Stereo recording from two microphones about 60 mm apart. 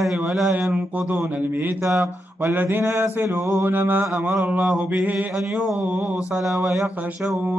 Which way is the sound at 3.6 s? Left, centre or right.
Right.